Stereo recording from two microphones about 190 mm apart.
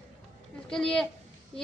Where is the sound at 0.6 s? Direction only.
5° left (ahead or behind).